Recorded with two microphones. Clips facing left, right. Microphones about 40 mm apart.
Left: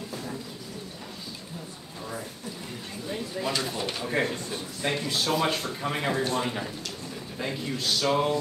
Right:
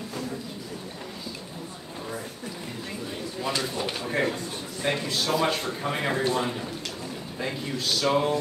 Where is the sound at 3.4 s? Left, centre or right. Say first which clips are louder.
Right 1 dB; centre.